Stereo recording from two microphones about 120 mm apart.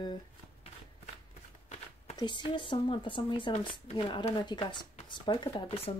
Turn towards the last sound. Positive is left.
turn(degrees=50)  # may be behind; listen again after turning